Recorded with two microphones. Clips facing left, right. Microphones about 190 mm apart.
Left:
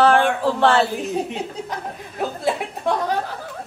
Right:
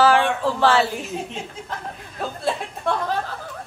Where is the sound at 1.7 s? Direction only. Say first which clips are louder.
Left 3 dB; 15° left (ahead or behind).